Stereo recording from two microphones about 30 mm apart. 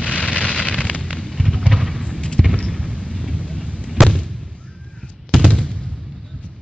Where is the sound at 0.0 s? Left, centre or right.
Left.